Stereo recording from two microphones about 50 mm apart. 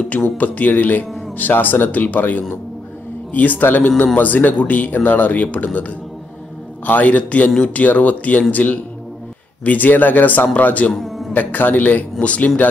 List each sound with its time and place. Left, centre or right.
0.4 s speech: left
6.9 s speech: left
10.9 s music: centre
11.3 s speech: left